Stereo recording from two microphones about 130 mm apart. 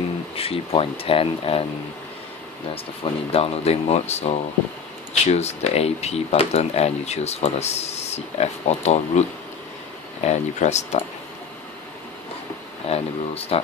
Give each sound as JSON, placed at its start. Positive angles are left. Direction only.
{"t": 0.4, "sound": "speech", "side_deg": 45}
{"t": 2.7, "sound": "speech", "side_deg": 45}
{"t": 10.2, "sound": "speech", "side_deg": 60}
{"t": 12.8, "sound": "speech", "side_deg": 50}